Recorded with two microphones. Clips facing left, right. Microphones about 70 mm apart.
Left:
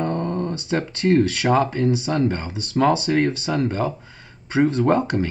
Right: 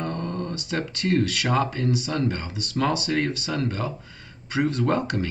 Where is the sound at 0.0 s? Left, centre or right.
Left.